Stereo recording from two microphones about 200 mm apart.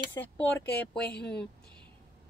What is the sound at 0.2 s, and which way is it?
Speech, 10° left (ahead or behind).